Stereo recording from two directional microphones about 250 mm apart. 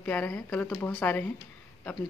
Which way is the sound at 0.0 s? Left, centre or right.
Centre.